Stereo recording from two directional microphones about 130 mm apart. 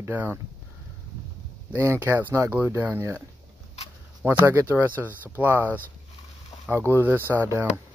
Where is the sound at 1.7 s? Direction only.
20° right (ahead or behind).